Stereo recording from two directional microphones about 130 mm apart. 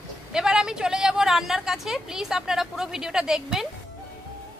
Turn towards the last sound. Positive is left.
turn(degrees=-5)  # may be behind; listen again after turning